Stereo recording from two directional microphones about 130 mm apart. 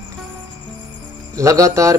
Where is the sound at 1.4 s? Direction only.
25° right (ahead or behind).